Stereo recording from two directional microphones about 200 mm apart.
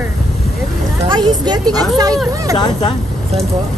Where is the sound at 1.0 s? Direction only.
25° right (ahead or behind).